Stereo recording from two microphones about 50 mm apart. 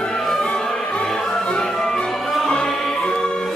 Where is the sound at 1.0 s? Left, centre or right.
Centre.